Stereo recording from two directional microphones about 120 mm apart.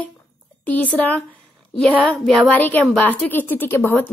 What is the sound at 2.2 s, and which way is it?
Speech, 5° left (ahead or behind).